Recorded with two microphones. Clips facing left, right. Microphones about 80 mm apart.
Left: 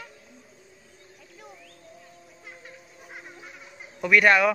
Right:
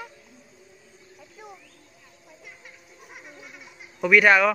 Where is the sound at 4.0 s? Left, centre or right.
Centre.